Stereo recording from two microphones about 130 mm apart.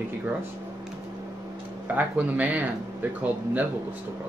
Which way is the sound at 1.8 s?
10° right (ahead or behind).